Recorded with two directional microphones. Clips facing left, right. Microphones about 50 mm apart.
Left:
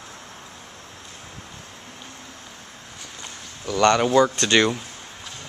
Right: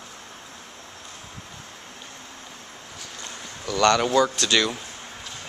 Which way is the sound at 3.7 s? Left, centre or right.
Left.